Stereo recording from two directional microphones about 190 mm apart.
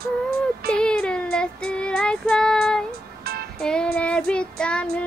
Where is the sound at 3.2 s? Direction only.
55° right (ahead or behind).